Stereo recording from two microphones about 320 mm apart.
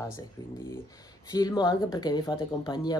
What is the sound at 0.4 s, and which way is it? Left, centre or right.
Speech, centre.